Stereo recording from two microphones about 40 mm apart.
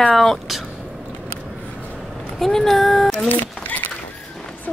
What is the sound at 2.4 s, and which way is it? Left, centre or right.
Speech, centre.